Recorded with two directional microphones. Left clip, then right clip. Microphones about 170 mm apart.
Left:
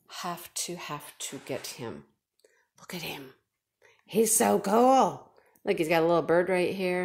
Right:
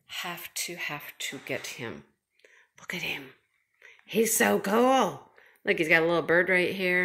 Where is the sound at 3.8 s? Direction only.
10° left (ahead or behind).